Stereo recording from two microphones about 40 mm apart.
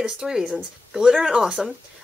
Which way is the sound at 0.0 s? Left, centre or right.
Right.